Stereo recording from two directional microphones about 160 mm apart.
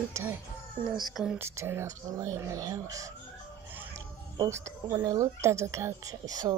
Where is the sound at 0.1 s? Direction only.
15° right (ahead or behind).